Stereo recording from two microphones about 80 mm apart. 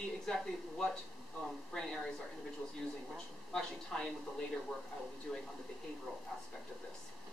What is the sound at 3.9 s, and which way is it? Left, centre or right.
Speech, centre.